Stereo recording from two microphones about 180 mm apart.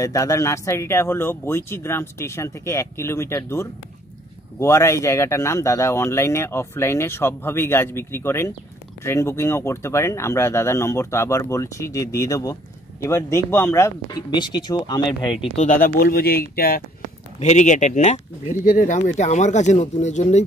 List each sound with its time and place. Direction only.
0.0 s speech: 20° left (ahead or behind)
15.5 s speech: 45° left (ahead or behind)
17.4 s speech: 40° left (ahead or behind)